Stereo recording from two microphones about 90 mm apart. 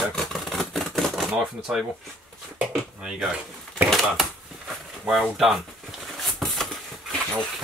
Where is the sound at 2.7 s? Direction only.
5° right (ahead or behind).